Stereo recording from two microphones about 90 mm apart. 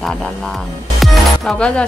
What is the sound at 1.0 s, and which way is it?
Music, centre (ahead or behind).